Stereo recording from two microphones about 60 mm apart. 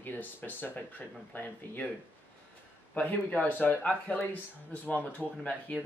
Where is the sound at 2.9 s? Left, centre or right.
Left.